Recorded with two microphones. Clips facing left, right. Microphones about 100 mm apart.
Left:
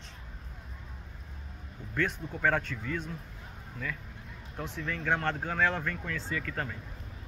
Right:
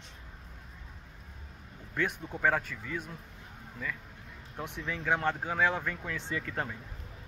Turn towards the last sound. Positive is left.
turn(degrees=-20)  # may be behind; listen again after turning